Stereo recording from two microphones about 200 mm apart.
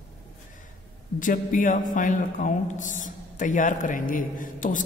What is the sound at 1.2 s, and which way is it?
A man's voice, 40° left (ahead or behind).